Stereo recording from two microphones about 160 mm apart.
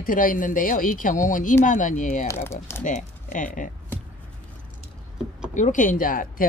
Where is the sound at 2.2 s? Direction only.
15° left (ahead or behind).